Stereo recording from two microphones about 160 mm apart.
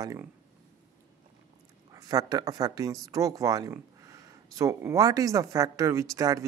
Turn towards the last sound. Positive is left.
turn(degrees=-20)  # may be behind; listen again after turning